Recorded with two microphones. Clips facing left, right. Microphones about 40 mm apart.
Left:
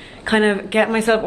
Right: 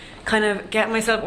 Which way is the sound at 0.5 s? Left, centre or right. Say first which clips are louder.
Left 4 dB; centre.